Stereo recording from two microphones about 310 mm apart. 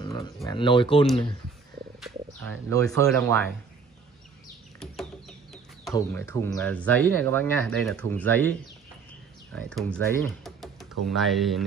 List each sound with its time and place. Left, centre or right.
0.0 s speech: centre
2.0 s speech: centre
5.9 s speech: centre